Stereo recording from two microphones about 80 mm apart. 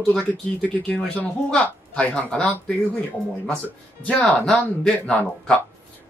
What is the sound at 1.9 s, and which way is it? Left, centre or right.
Speech, centre.